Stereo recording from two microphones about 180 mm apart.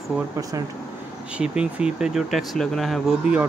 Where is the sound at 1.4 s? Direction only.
5° right (ahead or behind).